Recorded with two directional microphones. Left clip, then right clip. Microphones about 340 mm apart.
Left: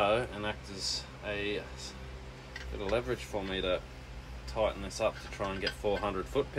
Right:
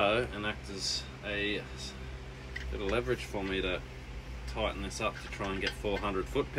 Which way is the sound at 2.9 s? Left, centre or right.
Left.